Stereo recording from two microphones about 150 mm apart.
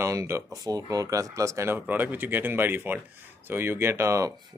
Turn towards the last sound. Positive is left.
turn(degrees=-20)  # may be behind; listen again after turning